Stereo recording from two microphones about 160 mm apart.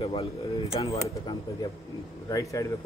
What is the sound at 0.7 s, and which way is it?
A man's voice, 20° left (ahead or behind).